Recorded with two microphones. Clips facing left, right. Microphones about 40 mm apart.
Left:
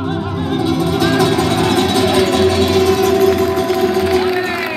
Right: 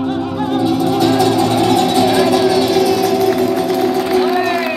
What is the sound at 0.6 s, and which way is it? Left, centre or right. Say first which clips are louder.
Music: right 1 dB; left.